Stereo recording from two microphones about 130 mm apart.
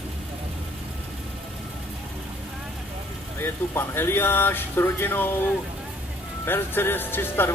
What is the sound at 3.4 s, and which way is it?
Speech, 15° left (ahead or behind).